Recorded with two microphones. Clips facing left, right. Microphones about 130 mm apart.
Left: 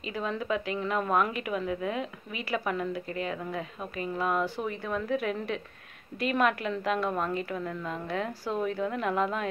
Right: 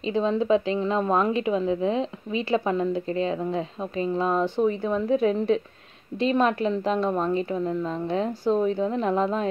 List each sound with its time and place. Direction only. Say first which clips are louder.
0.0 s a woman's voice: right 9 dB; 25° right (ahead or behind)